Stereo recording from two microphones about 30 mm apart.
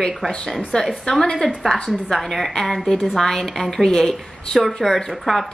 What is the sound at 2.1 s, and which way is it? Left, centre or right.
A woman's voice, centre.